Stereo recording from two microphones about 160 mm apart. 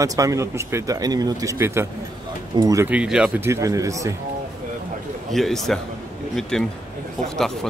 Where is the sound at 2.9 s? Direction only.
5° right (ahead or behind).